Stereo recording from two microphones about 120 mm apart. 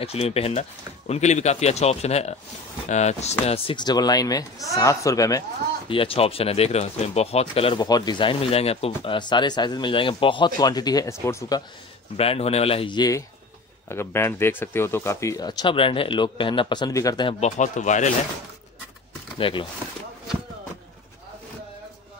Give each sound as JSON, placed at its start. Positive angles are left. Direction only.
{"t": 0.0, "sound": "speech", "side_deg": 55}
{"t": 3.8, "sound": "speech", "side_deg": 35}
{"t": 5.9, "sound": "speech", "side_deg": 50}
{"t": 7.8, "sound": "speech", "side_deg": 35}
{"t": 12.2, "sound": "speech", "side_deg": 55}
{"t": 12.9, "sound": "speech", "side_deg": 35}
{"t": 13.8, "sound": "speech", "side_deg": 20}
{"t": 15.4, "sound": "speech", "side_deg": 45}
{"t": 17.4, "sound": "speech", "side_deg": 90}
{"t": 19.3, "sound": "speech", "side_deg": 45}